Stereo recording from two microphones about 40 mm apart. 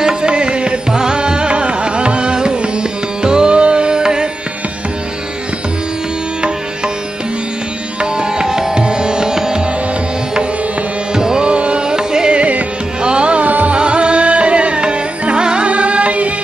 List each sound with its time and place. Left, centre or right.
0.0 s music: right
8.0 s music: centre
11.1 s tabla: centre
11.5 s music: right
11.9 s music: centre
13.5 s music: right
13.7 s music: right